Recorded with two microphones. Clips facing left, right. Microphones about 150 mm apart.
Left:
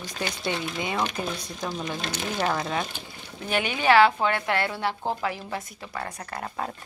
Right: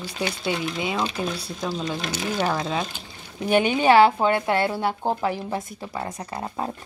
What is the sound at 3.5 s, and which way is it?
A woman's voice, 25° right (ahead or behind).